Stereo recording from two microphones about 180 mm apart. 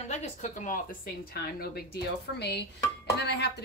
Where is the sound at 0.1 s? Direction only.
40° left (ahead or behind); by 3.5 s 70° left (ahead or behind).